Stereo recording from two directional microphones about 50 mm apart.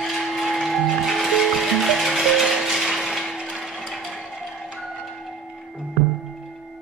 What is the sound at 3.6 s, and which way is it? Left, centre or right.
Ratchet, centre.